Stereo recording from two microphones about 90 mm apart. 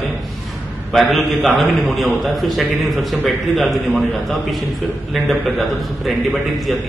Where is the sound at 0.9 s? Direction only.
Centre (ahead or behind).